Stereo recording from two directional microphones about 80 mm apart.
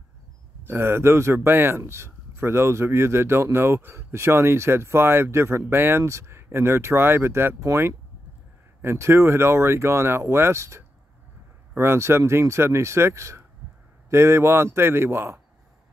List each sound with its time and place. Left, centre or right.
0.7 s speech: right